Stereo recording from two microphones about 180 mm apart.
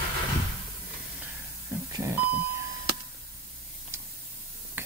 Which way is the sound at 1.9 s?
15° right (ahead or behind).